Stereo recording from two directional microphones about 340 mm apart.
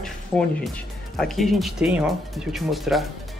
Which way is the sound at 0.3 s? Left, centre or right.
Centre.